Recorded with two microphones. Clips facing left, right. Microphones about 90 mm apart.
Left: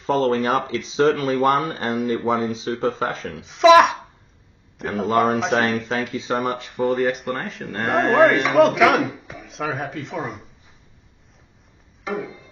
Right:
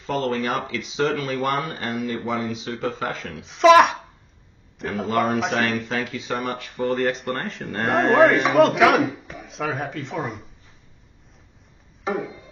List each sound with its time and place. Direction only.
0.0 s speech: 35° left (ahead or behind)
3.3 s speech: centre (ahead or behind)
4.8 s speech: 25° left (ahead or behind)
7.1 s speech: 5° left (ahead or behind)